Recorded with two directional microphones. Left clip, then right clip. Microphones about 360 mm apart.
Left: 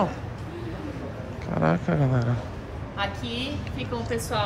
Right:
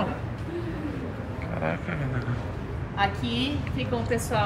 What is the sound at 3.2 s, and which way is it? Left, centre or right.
Speech, centre.